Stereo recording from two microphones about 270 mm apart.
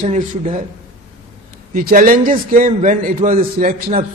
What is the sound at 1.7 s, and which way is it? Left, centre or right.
A man's voice, right.